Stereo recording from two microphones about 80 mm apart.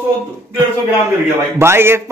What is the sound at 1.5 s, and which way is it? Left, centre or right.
Speech, right.